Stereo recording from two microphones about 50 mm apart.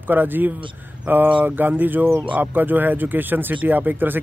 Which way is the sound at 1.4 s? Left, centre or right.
Right.